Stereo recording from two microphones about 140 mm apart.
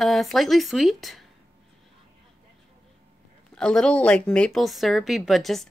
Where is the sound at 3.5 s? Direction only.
5° left (ahead or behind).